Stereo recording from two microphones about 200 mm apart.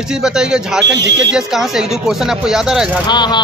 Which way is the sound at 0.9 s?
60° right (ahead or behind).